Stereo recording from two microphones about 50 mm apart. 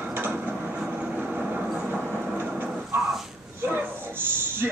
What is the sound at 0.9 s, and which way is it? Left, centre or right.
Vehicle, right.